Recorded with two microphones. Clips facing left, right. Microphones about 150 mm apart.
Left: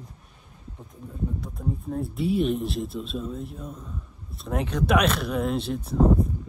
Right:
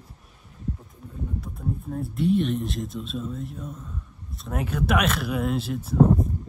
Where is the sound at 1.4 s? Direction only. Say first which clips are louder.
Left 1 dB; centre (ahead or behind).